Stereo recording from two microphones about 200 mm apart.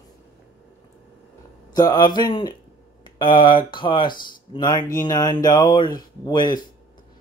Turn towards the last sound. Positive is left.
turn(degrees=20)  # may be behind; listen again after turning